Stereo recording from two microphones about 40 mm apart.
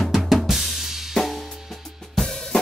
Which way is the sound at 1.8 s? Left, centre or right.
Centre.